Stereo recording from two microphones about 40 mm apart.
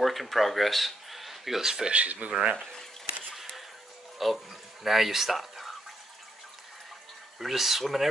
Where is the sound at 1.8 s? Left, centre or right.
Right.